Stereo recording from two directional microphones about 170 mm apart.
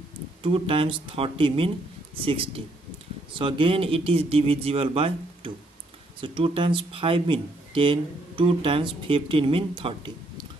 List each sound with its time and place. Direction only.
0.4 s speech: 35° right (ahead or behind)